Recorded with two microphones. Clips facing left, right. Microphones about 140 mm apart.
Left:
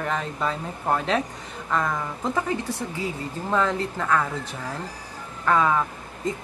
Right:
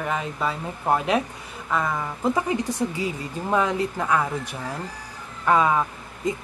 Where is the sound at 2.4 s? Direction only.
15° right (ahead or behind).